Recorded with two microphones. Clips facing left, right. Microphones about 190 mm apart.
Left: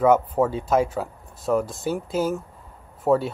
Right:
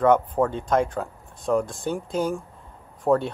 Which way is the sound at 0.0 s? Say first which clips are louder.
Left 1 dB; 5° left (ahead or behind).